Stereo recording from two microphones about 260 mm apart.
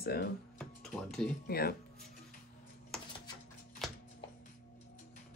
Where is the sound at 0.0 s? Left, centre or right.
Left.